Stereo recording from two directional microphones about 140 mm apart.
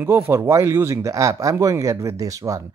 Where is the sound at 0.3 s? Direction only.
20° right (ahead or behind).